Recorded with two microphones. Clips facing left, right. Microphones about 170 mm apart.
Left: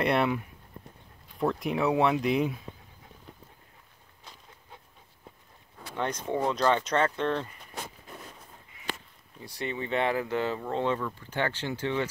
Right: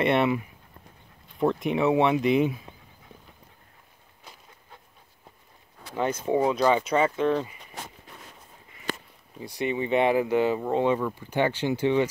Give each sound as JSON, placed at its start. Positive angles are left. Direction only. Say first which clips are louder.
{"t": 0.0, "sound": "speech", "louder": "right 3 dB", "side_deg": 0}
{"t": 5.9, "sound": "speech", "louder": "right 5 dB", "side_deg": -5}
{"t": 8.9, "sound": "a sound", "louder": "right 4 dB", "side_deg": -45}
{"t": 9.4, "sound": "speech", "louder": "right 6 dB", "side_deg": -15}